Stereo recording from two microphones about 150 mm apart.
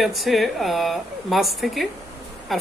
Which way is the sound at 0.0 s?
Centre (ahead or behind).